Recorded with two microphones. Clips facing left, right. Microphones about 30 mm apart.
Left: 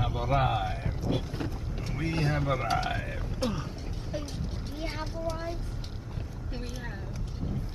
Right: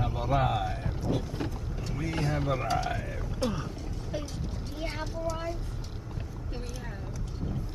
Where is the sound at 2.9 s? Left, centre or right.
Left.